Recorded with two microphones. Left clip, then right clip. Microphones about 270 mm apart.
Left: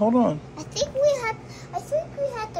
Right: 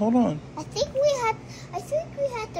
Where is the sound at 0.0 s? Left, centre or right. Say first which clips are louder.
Left 3 dB; centre.